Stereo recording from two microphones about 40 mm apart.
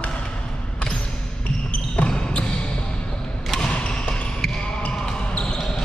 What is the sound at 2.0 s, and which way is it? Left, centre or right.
Basketball bounce, left.